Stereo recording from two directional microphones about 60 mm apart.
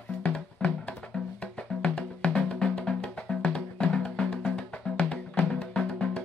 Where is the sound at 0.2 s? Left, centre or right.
Centre.